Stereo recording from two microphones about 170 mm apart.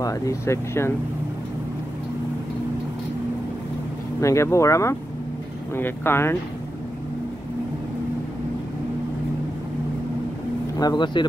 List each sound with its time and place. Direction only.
0.0 s speech: 20° left (ahead or behind)
4.2 s speech: 15° left (ahead or behind)
10.8 s speech: 25° left (ahead or behind)